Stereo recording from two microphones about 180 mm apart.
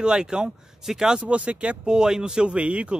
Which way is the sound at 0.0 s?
5° right (ahead or behind).